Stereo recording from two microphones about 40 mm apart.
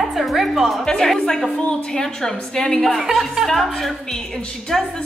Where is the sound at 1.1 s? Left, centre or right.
Centre.